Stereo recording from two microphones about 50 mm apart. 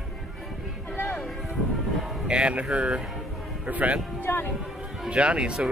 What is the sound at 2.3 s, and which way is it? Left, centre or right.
Speech, right.